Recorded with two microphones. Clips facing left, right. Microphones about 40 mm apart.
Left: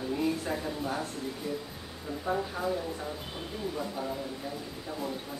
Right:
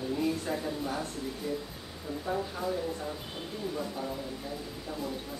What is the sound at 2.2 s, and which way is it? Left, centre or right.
Speech, centre.